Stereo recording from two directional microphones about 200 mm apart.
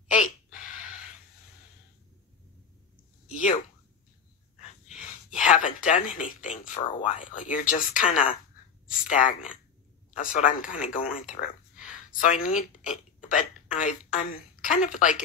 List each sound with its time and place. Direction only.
0.1 s a sound: 40° left (ahead or behind)
3.3 s speech: 40° left (ahead or behind)
4.9 s speech: 40° left (ahead or behind)